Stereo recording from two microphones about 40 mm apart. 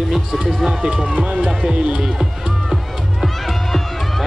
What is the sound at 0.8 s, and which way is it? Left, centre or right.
Speech, centre.